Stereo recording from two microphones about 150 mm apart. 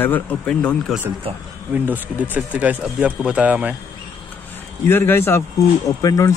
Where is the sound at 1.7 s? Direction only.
10° right (ahead or behind).